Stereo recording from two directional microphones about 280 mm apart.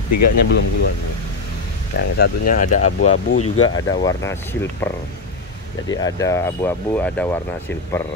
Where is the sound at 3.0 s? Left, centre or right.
Left.